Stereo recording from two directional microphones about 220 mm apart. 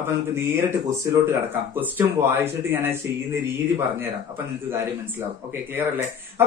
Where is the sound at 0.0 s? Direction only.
10° right (ahead or behind).